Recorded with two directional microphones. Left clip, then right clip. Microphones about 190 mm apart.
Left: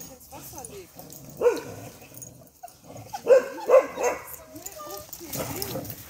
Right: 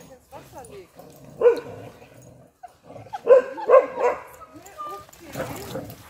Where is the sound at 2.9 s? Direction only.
Centre (ahead or behind).